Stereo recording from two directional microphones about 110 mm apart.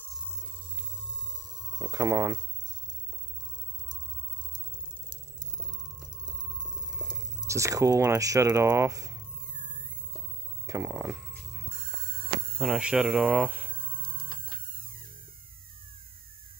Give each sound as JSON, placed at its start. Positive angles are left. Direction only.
{"t": 0.7, "sound": "a sound", "side_deg": -45}
{"t": 1.3, "sound": "hum", "side_deg": -40}
{"t": 6.2, "sound": "music", "side_deg": -35}
{"t": 7.4, "sound": "speech", "side_deg": -30}
{"t": 10.7, "sound": "a sound", "side_deg": -20}
{"t": 12.5, "sound": "speech", "side_deg": 0}
{"t": 14.4, "sound": "music", "side_deg": -50}